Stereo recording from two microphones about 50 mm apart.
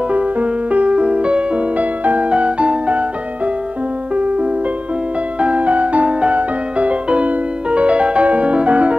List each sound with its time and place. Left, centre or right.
0.1 s music: right
4.1 s music: right